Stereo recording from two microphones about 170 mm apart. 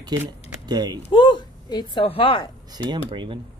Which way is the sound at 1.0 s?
30° left (ahead or behind).